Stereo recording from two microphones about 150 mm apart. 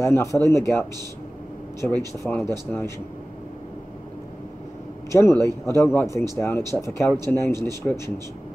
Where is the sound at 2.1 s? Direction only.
15° left (ahead or behind).